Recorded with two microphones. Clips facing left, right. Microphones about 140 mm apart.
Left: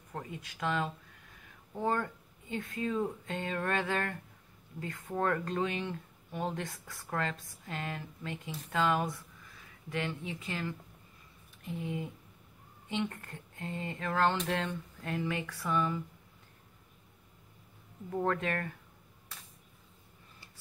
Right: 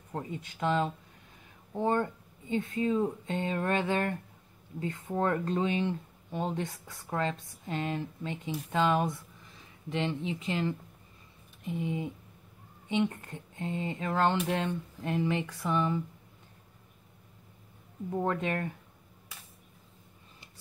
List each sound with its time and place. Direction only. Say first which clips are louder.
0.1 s speech: right 5 dB; 25° right (ahead or behind)
14.3 s speech: right 3 dB; 10° right (ahead or behind)
18.1 s speech: right 1 dB; 20° right (ahead or behind)